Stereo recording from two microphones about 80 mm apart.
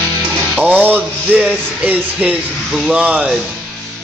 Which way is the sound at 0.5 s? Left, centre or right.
Right.